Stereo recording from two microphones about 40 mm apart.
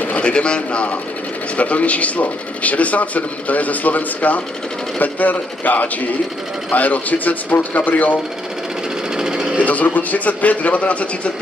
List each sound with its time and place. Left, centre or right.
0.2 s speech: left
9.1 s vehicle: centre
9.7 s speech: left